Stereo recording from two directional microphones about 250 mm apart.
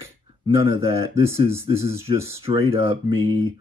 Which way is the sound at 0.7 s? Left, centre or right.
Centre.